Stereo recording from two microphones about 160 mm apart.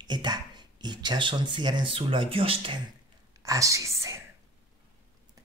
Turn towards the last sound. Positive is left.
turn(degrees=-20)  # may be behind; listen again after turning